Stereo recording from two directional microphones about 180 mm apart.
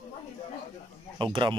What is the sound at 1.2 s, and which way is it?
Speech, 25° right (ahead or behind).